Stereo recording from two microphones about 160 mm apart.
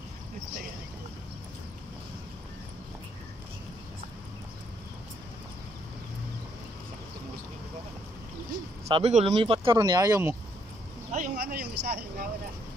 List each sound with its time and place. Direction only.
8.8 s speech: 40° right (ahead or behind); by 10.3 s 20° right (ahead or behind)
11.1 s speech: 50° right (ahead or behind)